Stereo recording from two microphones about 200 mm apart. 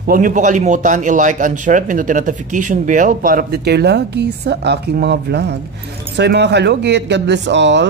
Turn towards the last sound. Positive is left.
turn(degrees=-60)  # may be behind; listen again after turning